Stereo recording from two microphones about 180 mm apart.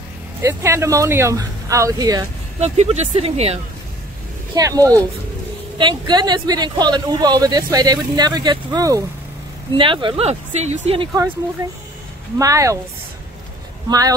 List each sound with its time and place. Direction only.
0.4 s speech: 15° right (ahead or behind)
2.6 s speech: 40° right (ahead or behind)
4.6 s a man's voice: 20° right (ahead or behind); by 11.1 s 35° right (ahead or behind)
11.6 s a man's voice: 20° right (ahead or behind)
13.8 s a man's voice: 20° right (ahead or behind)